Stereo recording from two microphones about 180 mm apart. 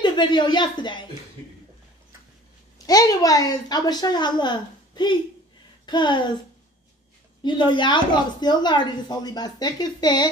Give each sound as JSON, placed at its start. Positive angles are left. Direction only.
{"t": 0.0, "sound": "speech", "side_deg": 25}
{"t": 2.9, "sound": "speech", "side_deg": 20}
{"t": 7.4, "sound": "speech", "side_deg": 25}